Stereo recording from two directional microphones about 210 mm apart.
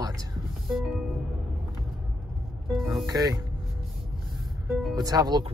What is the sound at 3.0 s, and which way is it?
Speech, 15° right (ahead or behind).